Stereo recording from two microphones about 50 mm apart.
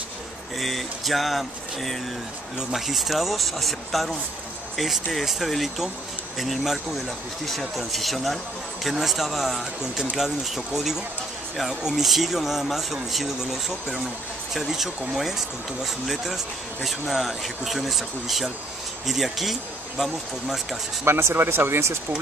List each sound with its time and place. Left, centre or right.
0.6 s speech: centre
21.0 s speech: right